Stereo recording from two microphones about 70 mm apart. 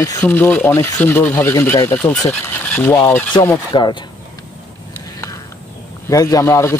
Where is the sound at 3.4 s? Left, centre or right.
Left.